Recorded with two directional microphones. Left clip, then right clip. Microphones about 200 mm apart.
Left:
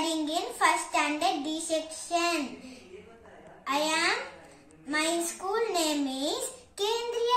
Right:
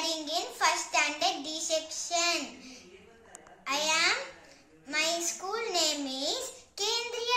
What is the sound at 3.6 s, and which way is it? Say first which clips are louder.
Speech: left 1 dB; 10° right (ahead or behind).